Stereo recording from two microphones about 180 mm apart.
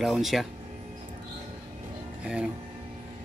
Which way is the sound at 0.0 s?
Centre (ahead or behind).